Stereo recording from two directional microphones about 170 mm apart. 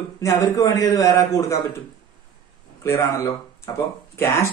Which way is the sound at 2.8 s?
20° left (ahead or behind).